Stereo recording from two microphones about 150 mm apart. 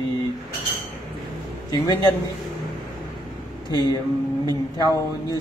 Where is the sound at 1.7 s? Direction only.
25° left (ahead or behind).